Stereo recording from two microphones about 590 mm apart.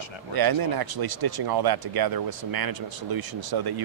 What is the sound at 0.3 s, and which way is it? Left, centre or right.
Speech, right.